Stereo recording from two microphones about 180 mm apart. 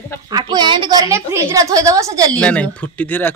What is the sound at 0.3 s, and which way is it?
A woman's voice, 25° right (ahead or behind).